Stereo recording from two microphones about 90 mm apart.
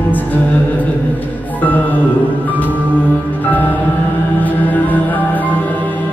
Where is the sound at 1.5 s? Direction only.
20° left (ahead or behind).